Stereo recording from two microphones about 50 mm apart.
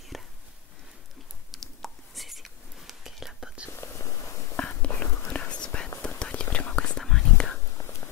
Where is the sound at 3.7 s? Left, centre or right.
Left.